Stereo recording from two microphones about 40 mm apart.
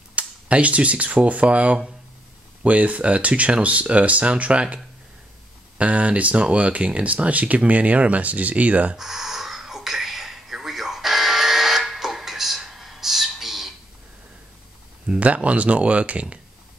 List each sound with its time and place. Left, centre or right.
0.1 s speech: right
5.8 s speech: right
8.9 s a sound: centre
15.1 s speech: right